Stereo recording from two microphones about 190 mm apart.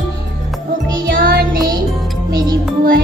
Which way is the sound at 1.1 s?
50° right (ahead or behind).